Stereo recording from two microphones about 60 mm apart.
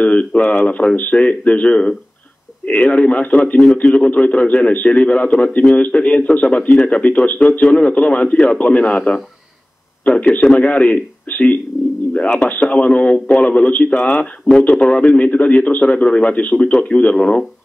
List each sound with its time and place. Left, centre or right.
0.0 s a man's voice: left
10.3 s a man's voice: left
14.0 s speech: centre
14.6 s a man's voice: left